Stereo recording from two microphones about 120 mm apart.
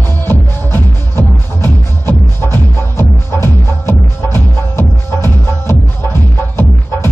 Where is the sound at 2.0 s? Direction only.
20° left (ahead or behind).